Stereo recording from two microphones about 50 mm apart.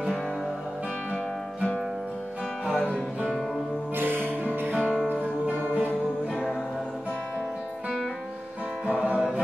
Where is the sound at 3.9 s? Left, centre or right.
Right.